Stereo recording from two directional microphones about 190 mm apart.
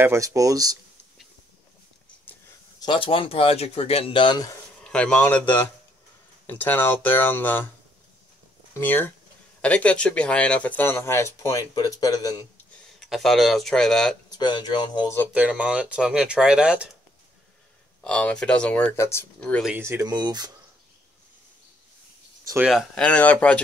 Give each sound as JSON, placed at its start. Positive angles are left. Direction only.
{"t": 0.0, "sound": "speech", "side_deg": -15}
{"t": 2.3, "sound": "a sound", "side_deg": 10}
{"t": 2.8, "sound": "speech", "side_deg": 25}
{"t": 4.8, "sound": "speech", "side_deg": 5}
{"t": 8.7, "sound": "speech", "side_deg": 10}
{"t": 13.0, "sound": "speech", "side_deg": 0}
{"t": 14.3, "sound": "speech", "side_deg": 20}
{"t": 15.3, "sound": "speech", "side_deg": -5}
{"t": 18.0, "sound": "speech", "side_deg": 5}
{"t": 19.6, "sound": "speech", "side_deg": -10}
{"t": 22.4, "sound": "a sound", "side_deg": -15}
{"t": 22.7, "sound": "speech", "side_deg": 0}